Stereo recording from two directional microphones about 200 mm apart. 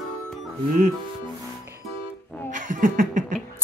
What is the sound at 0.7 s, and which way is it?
Speech, 40° right (ahead or behind).